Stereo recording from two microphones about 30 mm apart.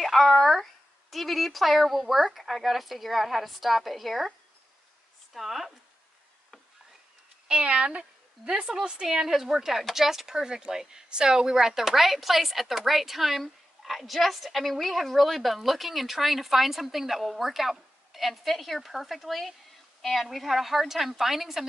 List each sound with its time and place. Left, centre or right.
0.0 s speech: centre
5.3 s speech: centre
7.4 s speech: right
8.5 s speech: right
9.0 s speech: centre
10.3 s speech: right; by 21.6 s centre